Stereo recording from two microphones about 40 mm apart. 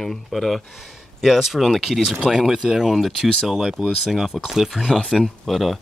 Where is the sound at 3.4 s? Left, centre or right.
Centre.